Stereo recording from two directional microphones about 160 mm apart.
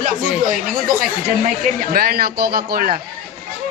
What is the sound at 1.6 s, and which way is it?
Speech, 65° right (ahead or behind).